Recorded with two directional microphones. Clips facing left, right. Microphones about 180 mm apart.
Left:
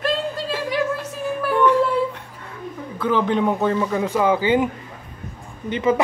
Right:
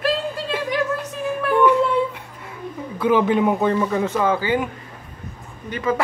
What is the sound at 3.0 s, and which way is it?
Speech, 10° right (ahead or behind).